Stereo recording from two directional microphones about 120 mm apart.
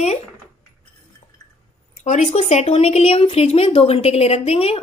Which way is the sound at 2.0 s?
70° left (ahead or behind).